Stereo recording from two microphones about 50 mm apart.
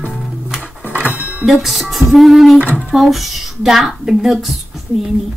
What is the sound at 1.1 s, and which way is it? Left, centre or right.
Music, right.